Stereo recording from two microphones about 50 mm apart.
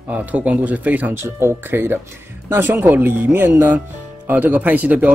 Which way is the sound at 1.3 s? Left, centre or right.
Right.